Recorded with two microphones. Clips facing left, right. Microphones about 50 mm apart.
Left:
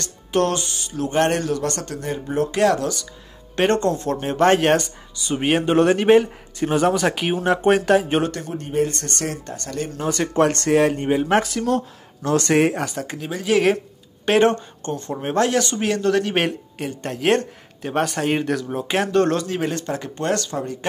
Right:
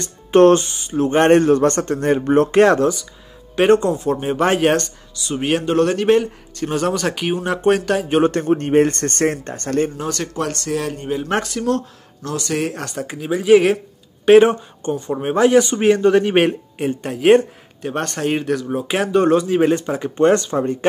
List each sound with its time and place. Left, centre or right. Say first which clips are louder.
0.0 s speech: right 9 dB; right
2.0 s speech: right 8 dB; right
3.5 s speech: right 5 dB; centre
8.3 s speech: right 11 dB; right
10.0 s speech: left 2 dB; centre
10.3 s speech: left 9 dB; left
11.2 s speech: left 1 dB; centre
12.2 s speech: left 6 dB; centre
12.7 s speech: left 1 dB; centre
17.8 s speech: even; centre; by 20.7 s right